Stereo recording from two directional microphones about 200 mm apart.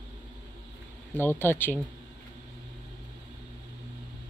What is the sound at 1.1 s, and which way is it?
Speech, 10° left (ahead or behind).